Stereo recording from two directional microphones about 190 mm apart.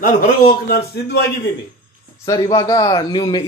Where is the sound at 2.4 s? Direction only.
25° left (ahead or behind).